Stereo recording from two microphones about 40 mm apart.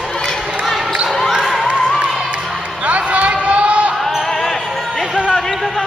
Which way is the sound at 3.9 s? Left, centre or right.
Centre.